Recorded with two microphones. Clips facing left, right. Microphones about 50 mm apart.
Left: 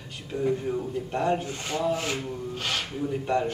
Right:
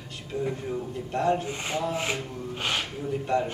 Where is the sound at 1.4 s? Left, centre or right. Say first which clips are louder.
Even; right.